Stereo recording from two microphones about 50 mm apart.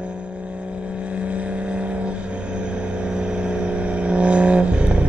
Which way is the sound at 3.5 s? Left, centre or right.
Right.